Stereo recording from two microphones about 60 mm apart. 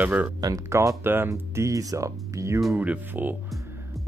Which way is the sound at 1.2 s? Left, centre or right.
Right.